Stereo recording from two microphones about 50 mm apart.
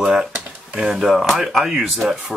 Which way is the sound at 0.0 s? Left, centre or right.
Centre.